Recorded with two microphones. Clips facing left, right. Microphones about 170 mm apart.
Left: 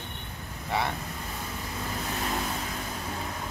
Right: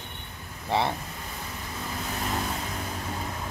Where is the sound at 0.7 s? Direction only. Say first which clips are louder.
Right 4 dB; 30° right (ahead or behind).